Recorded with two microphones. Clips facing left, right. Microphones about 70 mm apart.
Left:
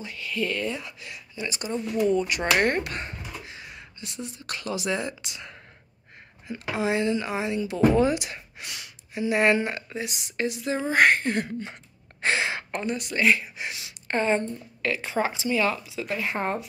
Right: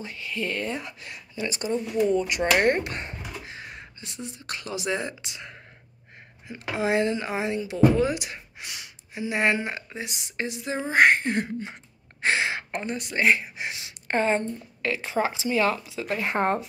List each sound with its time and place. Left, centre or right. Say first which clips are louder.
0.0 s speech: left 2 dB; right
2.0 s speech: even; right
2.6 s a sound: right 2 dB; right
4.0 s speech: left 3 dB; right
6.8 s speech: right 1 dB; right
7.2 s speech: even; right
8.1 s speech: left 3 dB; centre
12.2 s gasp: right 1 dB; centre
12.8 s a woman's voice: even; right